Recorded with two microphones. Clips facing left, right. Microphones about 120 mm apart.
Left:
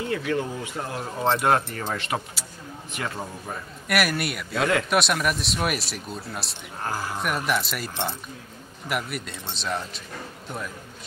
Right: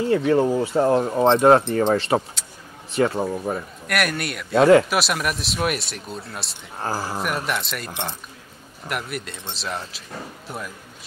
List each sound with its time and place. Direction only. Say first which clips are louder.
0.0 s speech: right 8 dB; 30° right (ahead or behind)
3.5 s a man's voice: right 8 dB; 25° right (ahead or behind)
3.8 s speech: left 1 dB; centre (ahead or behind)
4.6 s speech: right 11 dB; 35° right (ahead or behind)
4.8 s speech: even; centre (ahead or behind)
6.8 s speech: right 3 dB; 30° right (ahead or behind)
7.2 s speech: even; centre (ahead or behind)